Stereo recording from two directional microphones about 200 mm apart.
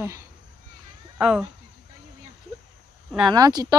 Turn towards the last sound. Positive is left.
turn(degrees=-20)  # may be behind; listen again after turning